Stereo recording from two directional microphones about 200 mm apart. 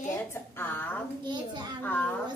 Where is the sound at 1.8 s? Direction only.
10° left (ahead or behind).